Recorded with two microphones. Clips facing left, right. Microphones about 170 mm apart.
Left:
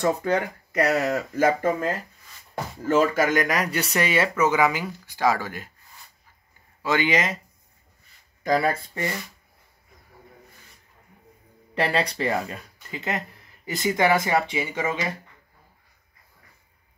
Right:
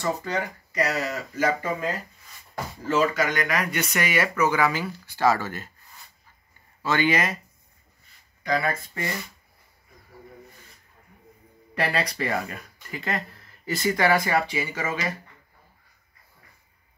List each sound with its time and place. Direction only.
0.0 s speech: 55° left (ahead or behind)
2.9 s speech: 50° left (ahead or behind); by 5.7 s 15° left (ahead or behind)
6.8 s speech: 15° left (ahead or behind)
8.5 s speech: 35° left (ahead or behind)
11.7 s speech: 30° left (ahead or behind)